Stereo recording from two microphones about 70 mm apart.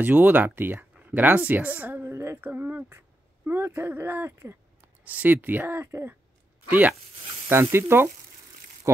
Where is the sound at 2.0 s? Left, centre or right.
Right.